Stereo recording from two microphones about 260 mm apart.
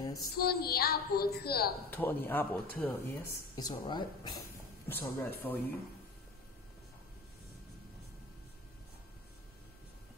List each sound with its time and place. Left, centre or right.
0.0 s female singing: centre
0.4 s a woman's voice: left
1.9 s speech: centre